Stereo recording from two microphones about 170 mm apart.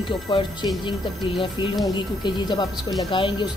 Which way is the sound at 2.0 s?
25° left (ahead or behind).